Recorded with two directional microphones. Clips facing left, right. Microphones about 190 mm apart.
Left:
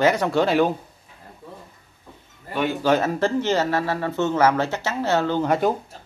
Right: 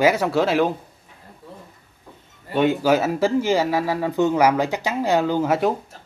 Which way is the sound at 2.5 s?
20° right (ahead or behind).